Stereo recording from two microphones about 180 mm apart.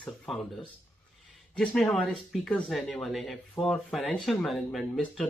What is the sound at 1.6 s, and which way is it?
Speech, 5° left (ahead or behind).